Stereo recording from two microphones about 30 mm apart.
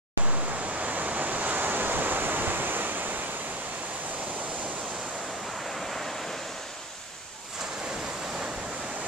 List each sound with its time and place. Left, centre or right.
0.2 s waves: right
5.8 s waves: centre